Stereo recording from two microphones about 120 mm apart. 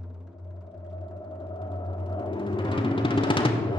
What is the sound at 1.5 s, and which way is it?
Music, 40° left (ahead or behind).